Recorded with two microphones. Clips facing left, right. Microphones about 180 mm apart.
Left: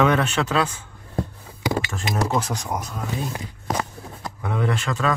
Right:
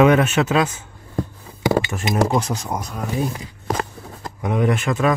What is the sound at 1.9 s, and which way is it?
Speech, 20° right (ahead or behind).